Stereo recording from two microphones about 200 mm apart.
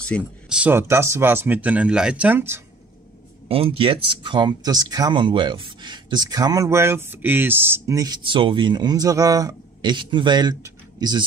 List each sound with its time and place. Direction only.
0.0 s a sound: 5° left (ahead or behind)
0.6 s speech: 10° right (ahead or behind)
3.4 s speech: 30° right (ahead or behind)